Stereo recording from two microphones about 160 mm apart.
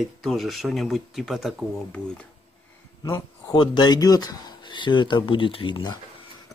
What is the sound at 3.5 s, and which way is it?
Speech, 30° left (ahead or behind).